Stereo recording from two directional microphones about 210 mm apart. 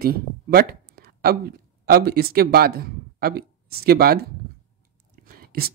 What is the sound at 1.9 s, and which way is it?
Speech, 50° right (ahead or behind).